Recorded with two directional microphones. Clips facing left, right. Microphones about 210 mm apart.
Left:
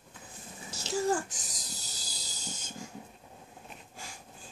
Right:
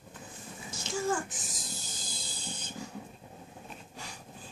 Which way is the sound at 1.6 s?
40° left (ahead or behind).